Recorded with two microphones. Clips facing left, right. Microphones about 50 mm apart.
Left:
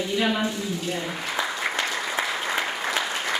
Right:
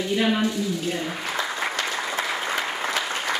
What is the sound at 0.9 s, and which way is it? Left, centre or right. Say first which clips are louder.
Applause: right 1 dB; centre.